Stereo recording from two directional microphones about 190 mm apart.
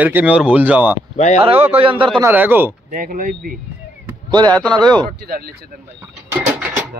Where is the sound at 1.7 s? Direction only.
25° right (ahead or behind).